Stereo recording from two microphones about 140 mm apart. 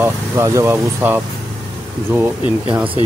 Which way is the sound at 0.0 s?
20° right (ahead or behind).